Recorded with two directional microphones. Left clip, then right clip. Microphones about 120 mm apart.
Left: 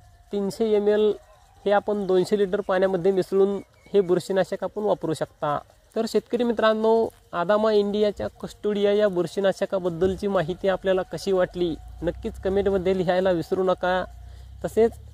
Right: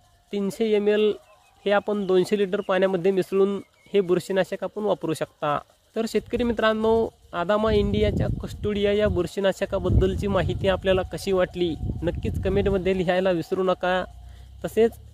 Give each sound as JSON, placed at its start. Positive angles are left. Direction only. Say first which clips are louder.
{"t": 0.3, "sound": "speech", "louder": "left 1 dB", "side_deg": -35}
{"t": 5.9, "sound": "speech", "louder": "left 1 dB", "side_deg": -25}